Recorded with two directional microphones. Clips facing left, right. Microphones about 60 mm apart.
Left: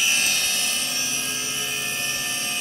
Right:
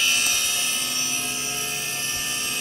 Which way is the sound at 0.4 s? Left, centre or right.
Left.